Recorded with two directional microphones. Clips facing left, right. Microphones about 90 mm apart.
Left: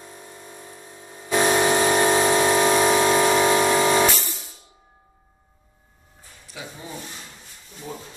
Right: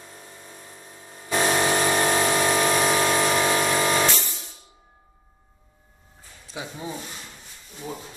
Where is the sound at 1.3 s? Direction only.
15° left (ahead or behind).